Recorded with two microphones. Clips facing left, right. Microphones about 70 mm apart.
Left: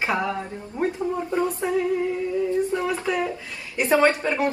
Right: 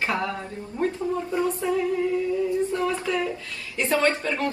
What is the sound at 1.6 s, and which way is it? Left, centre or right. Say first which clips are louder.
Speech: left 1 dB; left.